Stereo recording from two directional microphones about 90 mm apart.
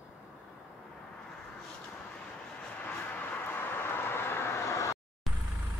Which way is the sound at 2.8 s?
20° left (ahead or behind).